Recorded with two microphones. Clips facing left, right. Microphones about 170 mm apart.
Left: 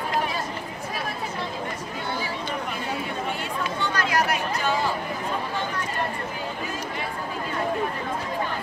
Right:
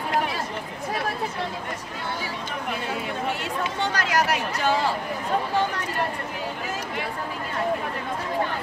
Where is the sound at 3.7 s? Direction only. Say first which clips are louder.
Even; 75° right (ahead or behind).